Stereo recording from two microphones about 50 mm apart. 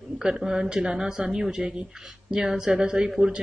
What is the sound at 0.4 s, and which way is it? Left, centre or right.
Speech, centre.